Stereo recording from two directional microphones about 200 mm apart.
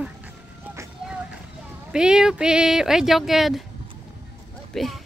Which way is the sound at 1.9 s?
5° right (ahead or behind).